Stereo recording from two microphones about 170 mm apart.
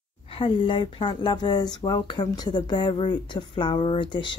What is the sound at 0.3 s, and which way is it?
Speech, 30° left (ahead or behind).